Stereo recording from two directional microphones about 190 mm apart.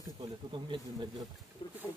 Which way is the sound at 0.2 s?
25° right (ahead or behind).